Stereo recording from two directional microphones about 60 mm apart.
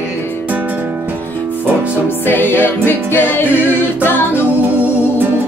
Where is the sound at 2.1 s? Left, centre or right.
Left.